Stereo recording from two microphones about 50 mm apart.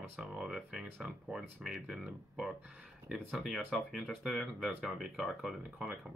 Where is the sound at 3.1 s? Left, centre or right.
Centre.